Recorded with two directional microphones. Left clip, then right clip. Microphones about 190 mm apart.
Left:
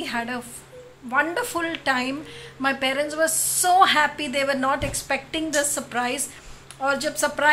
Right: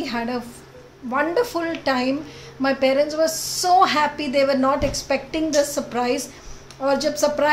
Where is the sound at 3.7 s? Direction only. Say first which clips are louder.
Right 1 dB; 10° right (ahead or behind).